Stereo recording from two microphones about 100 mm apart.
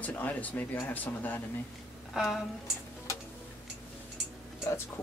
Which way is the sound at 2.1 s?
Centre (ahead or behind).